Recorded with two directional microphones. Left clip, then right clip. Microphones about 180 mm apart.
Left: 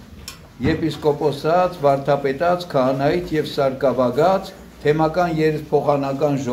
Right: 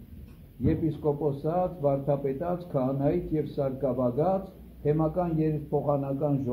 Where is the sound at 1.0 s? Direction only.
25° left (ahead or behind).